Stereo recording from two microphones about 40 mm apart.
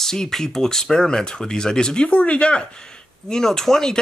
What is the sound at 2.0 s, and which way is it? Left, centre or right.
Speech, left.